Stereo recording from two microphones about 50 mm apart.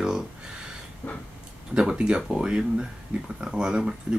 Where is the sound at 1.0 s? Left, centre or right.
Left.